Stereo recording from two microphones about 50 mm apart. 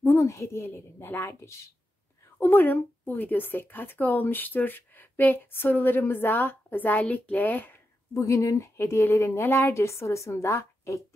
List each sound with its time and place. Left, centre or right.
0.2 s a woman's voice: left
0.7 s a woman's voice: left
2.3 s a woman's voice: left
8.1 s a woman's voice: left
9.8 s a woman's voice: left